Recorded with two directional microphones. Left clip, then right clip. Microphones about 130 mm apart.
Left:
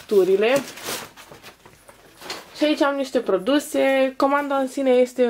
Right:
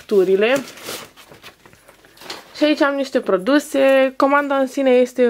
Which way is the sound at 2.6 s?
30° right (ahead or behind).